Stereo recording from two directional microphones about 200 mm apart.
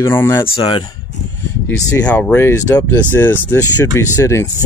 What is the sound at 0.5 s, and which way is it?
Speech, 25° left (ahead or behind).